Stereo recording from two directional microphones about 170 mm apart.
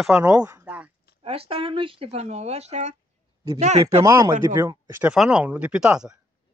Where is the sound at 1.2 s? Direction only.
35° right (ahead or behind).